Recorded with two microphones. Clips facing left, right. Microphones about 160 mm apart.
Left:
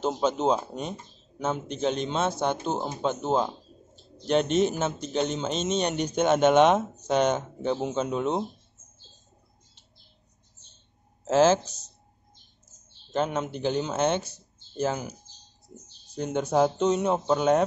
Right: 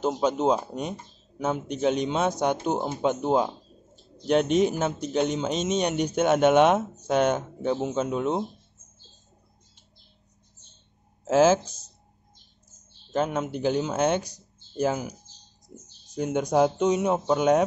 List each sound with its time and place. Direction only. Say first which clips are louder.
0.0 s a man's voice: right 1 dB; 10° right (ahead or behind)
11.2 s a man's voice: right 1 dB; 10° right (ahead or behind)
13.1 s a man's voice: right 1 dB; 5° right (ahead or behind)
16.2 s a man's voice: right 1 dB; 10° right (ahead or behind)